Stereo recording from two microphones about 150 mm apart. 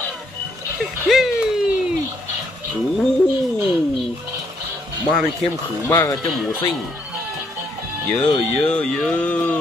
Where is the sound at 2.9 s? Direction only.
Centre (ahead or behind).